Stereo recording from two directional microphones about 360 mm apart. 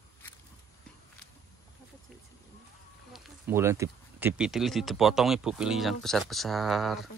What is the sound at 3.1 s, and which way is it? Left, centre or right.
Speech, centre.